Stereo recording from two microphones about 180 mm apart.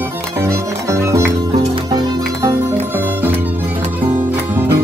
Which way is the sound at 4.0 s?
10° right (ahead or behind).